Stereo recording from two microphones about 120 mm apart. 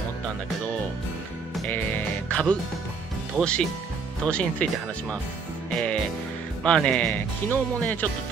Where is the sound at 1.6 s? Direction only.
15° left (ahead or behind).